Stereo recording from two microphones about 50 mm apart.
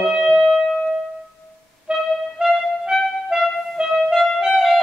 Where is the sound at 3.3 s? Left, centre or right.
Centre.